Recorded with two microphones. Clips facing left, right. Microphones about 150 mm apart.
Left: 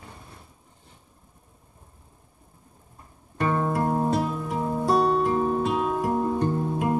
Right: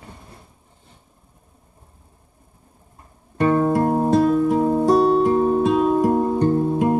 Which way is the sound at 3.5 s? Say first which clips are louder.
Right 7 dB; 40° right (ahead or behind).